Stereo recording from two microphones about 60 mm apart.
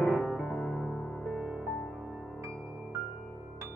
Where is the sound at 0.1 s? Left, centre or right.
Centre.